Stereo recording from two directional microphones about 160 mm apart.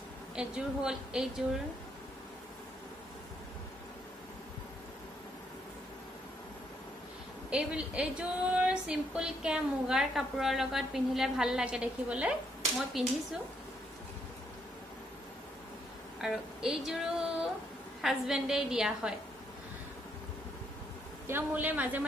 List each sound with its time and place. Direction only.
0.4 s a woman's voice: 5° right (ahead or behind)
7.4 s a woman's voice: 5° right (ahead or behind)
16.2 s a woman's voice: 5° right (ahead or behind)
21.3 s a woman's voice: 10° right (ahead or behind)